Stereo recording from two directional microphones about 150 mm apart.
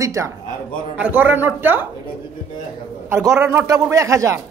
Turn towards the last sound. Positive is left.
turn(degrees=-20)  # may be behind; listen again after turning